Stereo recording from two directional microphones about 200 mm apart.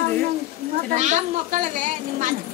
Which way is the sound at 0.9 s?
35° right (ahead or behind).